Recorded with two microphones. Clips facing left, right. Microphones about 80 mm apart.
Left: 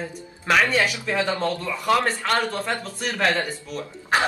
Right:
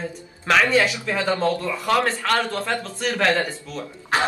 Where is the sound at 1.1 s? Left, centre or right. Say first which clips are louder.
Right 3 dB; centre.